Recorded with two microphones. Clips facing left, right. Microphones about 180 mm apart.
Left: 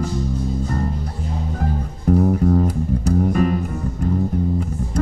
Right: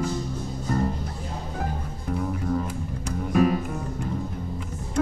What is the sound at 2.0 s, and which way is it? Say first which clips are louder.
Music: left 11 dB; 45° left (ahead or behind).